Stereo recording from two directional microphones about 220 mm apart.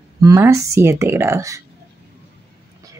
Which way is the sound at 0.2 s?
15° right (ahead or behind).